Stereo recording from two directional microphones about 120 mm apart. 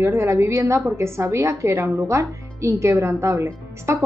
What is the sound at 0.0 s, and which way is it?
A woman's voice, 25° right (ahead or behind).